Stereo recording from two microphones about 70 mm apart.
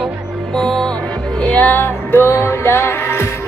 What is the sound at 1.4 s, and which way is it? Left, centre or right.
Music, left.